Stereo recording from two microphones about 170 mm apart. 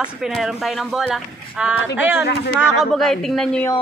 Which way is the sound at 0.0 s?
Centre (ahead or behind).